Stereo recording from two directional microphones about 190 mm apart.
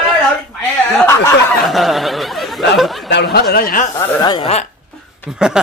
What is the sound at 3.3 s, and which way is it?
Speech, 50° left (ahead or behind).